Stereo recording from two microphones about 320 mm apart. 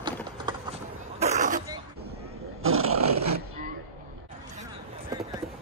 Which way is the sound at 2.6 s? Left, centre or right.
Right.